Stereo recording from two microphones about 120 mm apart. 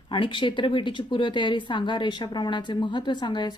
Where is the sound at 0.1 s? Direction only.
45° left (ahead or behind).